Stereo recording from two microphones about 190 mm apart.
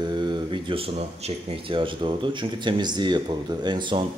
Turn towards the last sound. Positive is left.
turn(degrees=-25)  # may be behind; listen again after turning